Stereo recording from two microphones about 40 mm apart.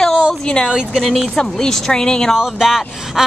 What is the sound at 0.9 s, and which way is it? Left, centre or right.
Speech, centre.